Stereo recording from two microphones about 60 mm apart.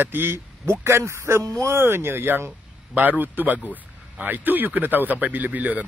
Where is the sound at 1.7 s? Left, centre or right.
Right.